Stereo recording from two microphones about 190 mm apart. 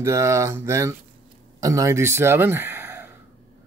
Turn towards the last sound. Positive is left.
turn(degrees=-10)  # may be behind; listen again after turning